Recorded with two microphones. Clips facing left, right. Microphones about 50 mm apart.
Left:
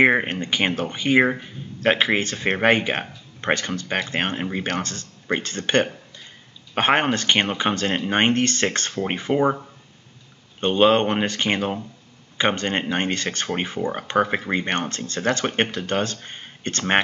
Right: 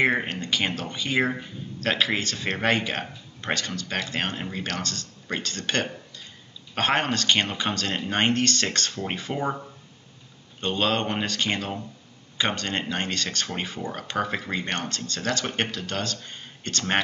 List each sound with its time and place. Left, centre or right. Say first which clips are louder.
0.0 s speech: left 5 dB; left
10.6 s speech: left 8 dB; left